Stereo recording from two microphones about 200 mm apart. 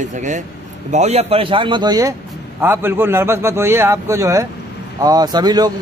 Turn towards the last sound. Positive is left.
turn(degrees=-20)  # may be behind; listen again after turning